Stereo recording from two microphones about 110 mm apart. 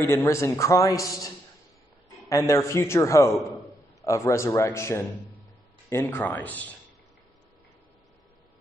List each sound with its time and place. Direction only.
0.1 s a man's voice: 25° left (ahead or behind)